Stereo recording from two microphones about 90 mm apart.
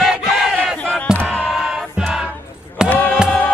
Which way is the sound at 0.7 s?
15° left (ahead or behind).